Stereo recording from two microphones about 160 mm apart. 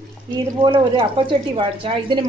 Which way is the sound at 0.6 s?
35° right (ahead or behind).